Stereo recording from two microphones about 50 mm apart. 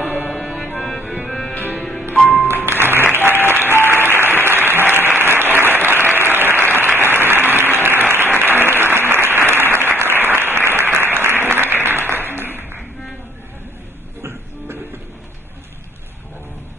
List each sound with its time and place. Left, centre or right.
0.4 s music: centre
1.0 s music: centre
1.5 s music: left
2.1 s music: centre
2.4 s music: right
3.0 s applause: right
3.7 s applause: left
4.5 s applause: right
12.3 s a sound: right